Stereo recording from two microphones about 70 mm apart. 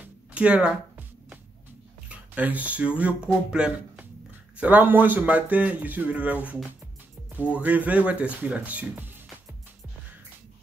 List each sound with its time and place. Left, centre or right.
0.0 s a sound: centre
2.0 s speech: right
4.6 s speech: right